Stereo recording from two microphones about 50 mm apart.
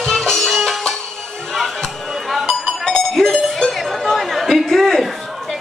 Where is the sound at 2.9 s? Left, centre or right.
Centre.